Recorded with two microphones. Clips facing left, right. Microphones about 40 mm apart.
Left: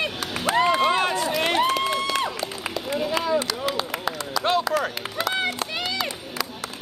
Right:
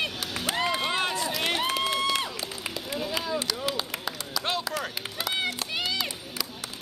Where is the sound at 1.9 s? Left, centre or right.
Centre.